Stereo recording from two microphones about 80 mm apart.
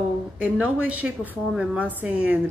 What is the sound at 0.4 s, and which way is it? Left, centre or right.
A woman's voice, centre.